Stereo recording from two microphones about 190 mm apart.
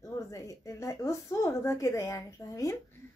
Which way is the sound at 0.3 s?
15° left (ahead or behind).